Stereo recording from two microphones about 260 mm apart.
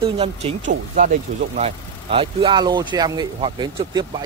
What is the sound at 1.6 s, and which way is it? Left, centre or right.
A man's voice, right.